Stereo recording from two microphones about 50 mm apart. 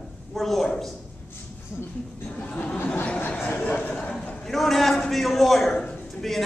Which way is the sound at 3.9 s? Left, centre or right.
Left.